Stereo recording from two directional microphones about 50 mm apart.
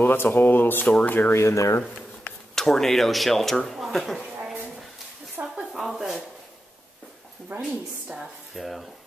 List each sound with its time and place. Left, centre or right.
0.0 s speech: left
1.3 s speech: left
2.5 s speech: centre
5.7 s a sound: centre
7.6 s a woman's voice: centre
8.5 s speech: centre